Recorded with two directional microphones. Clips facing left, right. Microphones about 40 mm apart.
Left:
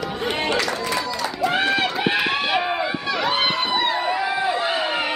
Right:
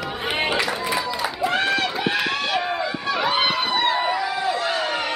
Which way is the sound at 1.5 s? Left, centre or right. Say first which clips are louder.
Left 2 dB; centre.